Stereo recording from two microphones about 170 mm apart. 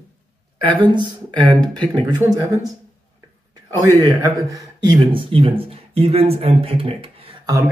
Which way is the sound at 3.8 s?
20° right (ahead or behind).